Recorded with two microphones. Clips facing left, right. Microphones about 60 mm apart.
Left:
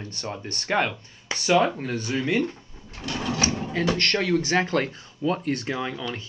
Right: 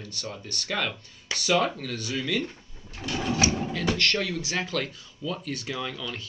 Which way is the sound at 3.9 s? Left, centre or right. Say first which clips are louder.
Left 4 dB; left.